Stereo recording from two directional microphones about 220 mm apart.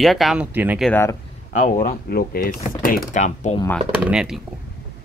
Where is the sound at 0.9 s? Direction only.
10° left (ahead or behind).